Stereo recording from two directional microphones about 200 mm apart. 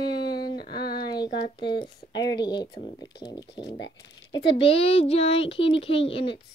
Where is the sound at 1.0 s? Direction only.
20° left (ahead or behind).